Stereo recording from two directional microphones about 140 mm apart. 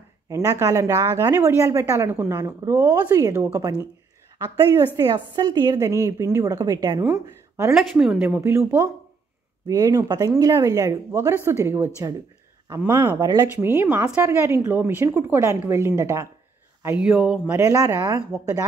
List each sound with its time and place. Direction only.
0.3 s a woman's voice: 20° right (ahead or behind)
4.9 s a woman's voice: 30° right (ahead or behind)
7.1 s speech: 20° right (ahead or behind)
7.7 s a woman's voice: 5° right (ahead or behind)
8.2 s a woman's voice: 15° right (ahead or behind)
16.8 s a woman's voice: 10° right (ahead or behind)
17.5 s a woman's voice: 20° right (ahead or behind)